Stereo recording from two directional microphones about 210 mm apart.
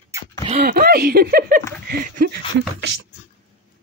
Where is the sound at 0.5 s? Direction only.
45° right (ahead or behind).